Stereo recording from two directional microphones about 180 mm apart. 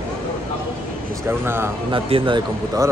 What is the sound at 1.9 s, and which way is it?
Speech, 30° right (ahead or behind).